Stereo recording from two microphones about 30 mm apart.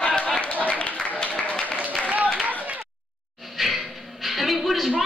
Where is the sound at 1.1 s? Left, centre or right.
Left.